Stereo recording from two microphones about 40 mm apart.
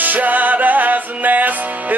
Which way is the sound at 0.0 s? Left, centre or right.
Right.